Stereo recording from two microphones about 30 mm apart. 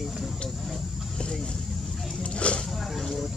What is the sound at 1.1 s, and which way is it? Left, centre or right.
Speech, left.